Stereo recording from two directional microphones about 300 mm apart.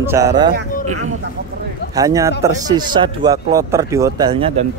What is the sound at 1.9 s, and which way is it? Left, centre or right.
Speech, centre.